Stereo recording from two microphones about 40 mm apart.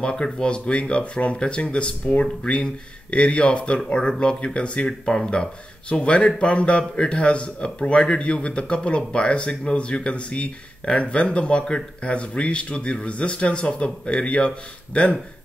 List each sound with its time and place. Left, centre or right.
0.0 s speech: centre